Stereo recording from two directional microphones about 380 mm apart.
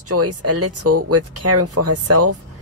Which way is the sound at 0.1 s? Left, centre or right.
Right.